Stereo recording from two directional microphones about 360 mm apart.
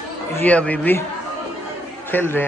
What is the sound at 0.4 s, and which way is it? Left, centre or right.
Speech, centre.